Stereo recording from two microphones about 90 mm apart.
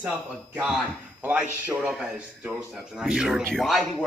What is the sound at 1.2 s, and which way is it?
Speech, 20° right (ahead or behind).